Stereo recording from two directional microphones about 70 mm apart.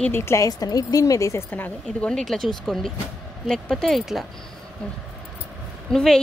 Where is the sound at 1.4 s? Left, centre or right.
Left.